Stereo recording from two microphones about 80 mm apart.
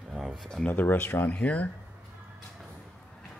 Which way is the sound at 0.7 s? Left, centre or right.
Left.